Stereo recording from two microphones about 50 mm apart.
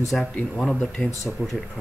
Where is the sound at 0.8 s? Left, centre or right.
Centre.